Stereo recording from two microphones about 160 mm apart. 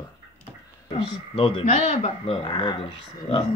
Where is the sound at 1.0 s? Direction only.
35° left (ahead or behind).